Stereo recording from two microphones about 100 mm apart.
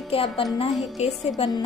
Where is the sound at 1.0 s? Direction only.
90° left.